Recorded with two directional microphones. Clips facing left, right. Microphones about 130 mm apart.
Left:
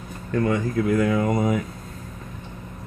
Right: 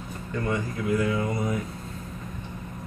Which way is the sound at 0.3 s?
70° left (ahead or behind).